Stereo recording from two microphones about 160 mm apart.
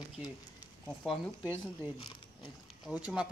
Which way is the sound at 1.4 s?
10° right (ahead or behind).